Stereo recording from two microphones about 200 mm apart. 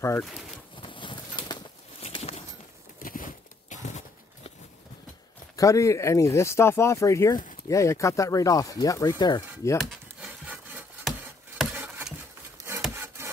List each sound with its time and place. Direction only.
0.0 s speech: 10° left (ahead or behind)
0.7 s bird: 25° left (ahead or behind)
3.0 s a sound: 45° left (ahead or behind)
5.6 s speech: 15° left (ahead or behind)
9.8 s wood: 5° right (ahead or behind)
11.7 s patter: 10° right (ahead or behind)
12.9 s rub: 15° right (ahead or behind)